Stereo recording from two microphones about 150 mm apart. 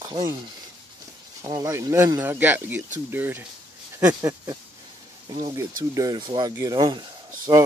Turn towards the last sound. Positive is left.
turn(degrees=-30)  # may be behind; listen again after turning